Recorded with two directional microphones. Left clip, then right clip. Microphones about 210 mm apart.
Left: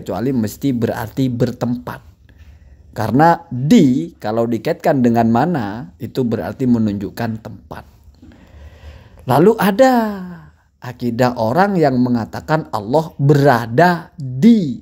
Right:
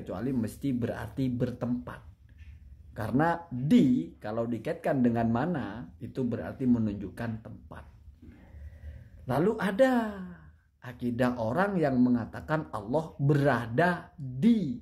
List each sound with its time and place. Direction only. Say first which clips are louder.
0.0 s a woman's voice: left 14 dB; 35° left (ahead or behind)
9.2 s a woman's voice: left 16 dB; 40° left (ahead or behind)